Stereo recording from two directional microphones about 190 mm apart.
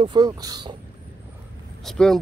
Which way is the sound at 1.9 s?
Centre (ahead or behind).